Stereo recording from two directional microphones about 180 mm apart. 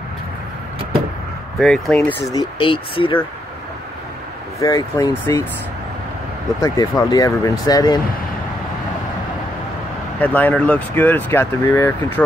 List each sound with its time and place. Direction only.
1.6 s speech: centre (ahead or behind)
2.3 s speech: 30° left (ahead or behind)
4.6 s speech: 15° left (ahead or behind)
6.6 s speech: 20° left (ahead or behind)
10.2 s speech: 10° left (ahead or behind)